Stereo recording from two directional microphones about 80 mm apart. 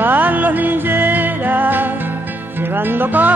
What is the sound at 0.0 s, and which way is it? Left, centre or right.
Music, right.